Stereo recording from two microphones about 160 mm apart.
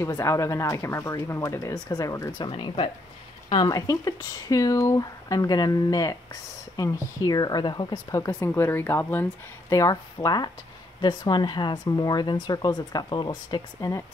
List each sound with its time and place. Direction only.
0.0 s speech: 15° left (ahead or behind); by 2.9 s 35° left (ahead or behind)
3.4 s speech: 25° left (ahead or behind)